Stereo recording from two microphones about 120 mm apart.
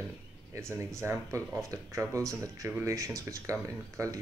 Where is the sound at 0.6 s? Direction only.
25° right (ahead or behind).